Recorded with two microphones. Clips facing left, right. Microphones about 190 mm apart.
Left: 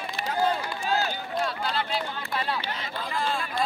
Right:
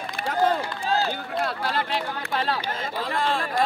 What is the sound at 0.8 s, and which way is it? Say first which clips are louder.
Run: right 1 dB; 30° right (ahead or behind).